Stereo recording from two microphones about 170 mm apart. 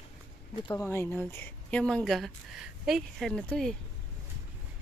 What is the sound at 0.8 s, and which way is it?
Speech, 10° left (ahead or behind).